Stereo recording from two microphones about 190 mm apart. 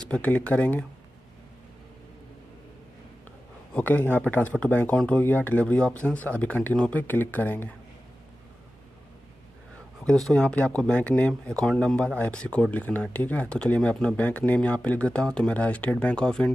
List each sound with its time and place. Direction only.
0.1 s speech: 5° left (ahead or behind)
3.7 s speech: 10° left (ahead or behind)
10.0 s speech: 5° left (ahead or behind)